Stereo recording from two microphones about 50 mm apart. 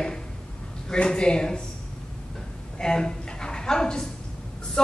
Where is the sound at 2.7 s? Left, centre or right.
Centre.